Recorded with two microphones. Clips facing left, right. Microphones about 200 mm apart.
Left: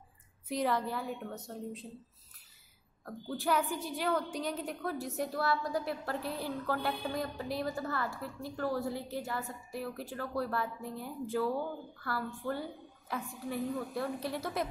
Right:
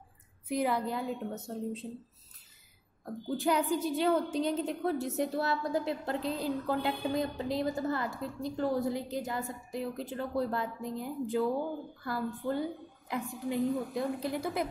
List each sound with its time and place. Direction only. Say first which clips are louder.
0.5 s a woman's voice: right 2 dB; 10° right (ahead or behind)
3.1 s a woman's voice: right 3 dB; 20° right (ahead or behind)